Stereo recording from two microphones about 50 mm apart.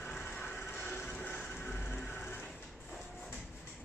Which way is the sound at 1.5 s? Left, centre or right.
Left.